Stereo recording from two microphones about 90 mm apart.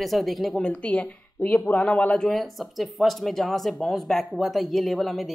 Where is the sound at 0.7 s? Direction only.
15° left (ahead or behind).